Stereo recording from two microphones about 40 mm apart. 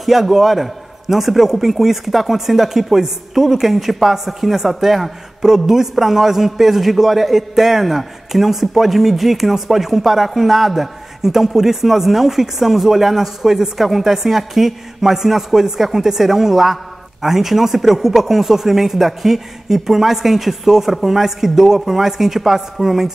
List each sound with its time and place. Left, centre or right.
0.0 s a man's voice: centre